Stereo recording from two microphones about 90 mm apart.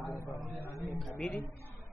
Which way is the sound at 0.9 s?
Centre (ahead or behind).